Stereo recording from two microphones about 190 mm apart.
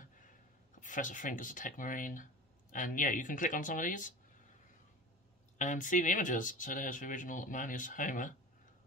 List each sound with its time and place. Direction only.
0.7 s speech: 45° left (ahead or behind)
5.6 s speech: 40° left (ahead or behind)